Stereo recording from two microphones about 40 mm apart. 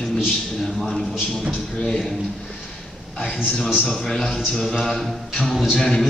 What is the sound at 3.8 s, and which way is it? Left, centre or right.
Speech, centre.